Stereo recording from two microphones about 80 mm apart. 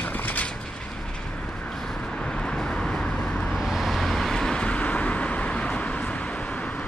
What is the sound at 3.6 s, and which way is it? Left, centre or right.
Vehicle, centre.